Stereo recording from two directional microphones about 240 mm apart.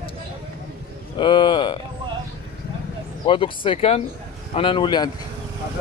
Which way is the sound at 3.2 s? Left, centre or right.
Left.